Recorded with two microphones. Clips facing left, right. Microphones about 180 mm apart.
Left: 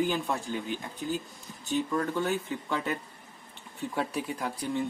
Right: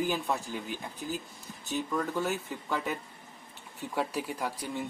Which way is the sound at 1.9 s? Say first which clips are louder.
Right 1 dB; 5° right (ahead or behind).